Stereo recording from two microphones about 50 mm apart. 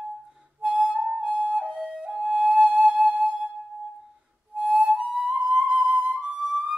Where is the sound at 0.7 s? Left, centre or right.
Centre.